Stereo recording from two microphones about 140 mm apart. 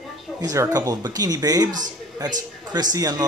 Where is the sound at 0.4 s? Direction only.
25° right (ahead or behind).